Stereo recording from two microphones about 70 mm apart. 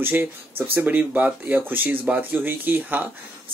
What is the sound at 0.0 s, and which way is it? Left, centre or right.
Speech, right.